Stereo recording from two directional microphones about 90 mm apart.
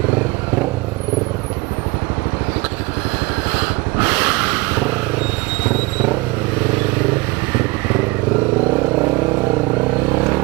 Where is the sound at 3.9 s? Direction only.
20° right (ahead or behind).